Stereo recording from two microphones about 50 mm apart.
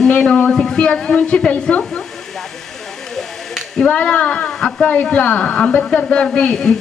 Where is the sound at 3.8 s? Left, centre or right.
Left.